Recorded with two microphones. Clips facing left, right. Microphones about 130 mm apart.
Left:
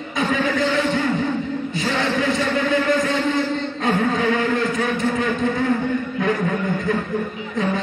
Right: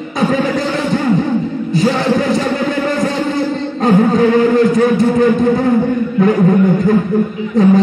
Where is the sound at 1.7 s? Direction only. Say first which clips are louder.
Right 10 dB; 35° right (ahead or behind).